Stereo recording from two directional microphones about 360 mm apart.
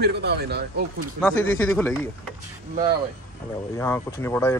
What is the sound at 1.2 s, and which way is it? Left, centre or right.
Speech, centre.